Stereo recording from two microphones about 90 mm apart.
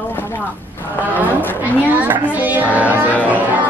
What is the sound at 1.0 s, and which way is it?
Speech, 20° right (ahead or behind).